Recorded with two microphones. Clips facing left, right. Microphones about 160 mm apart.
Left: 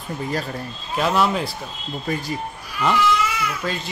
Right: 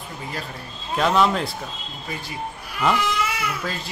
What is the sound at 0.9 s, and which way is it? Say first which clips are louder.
Speech: right 1 dB; 5° left (ahead or behind).